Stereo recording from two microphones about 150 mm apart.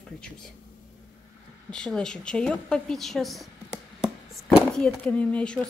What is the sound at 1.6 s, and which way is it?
A woman's voice, 5° left (ahead or behind).